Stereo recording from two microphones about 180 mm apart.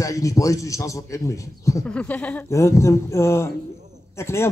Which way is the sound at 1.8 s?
5° left (ahead or behind).